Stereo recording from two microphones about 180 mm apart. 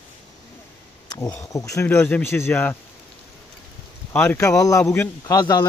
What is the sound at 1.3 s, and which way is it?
Speech, 20° left (ahead or behind).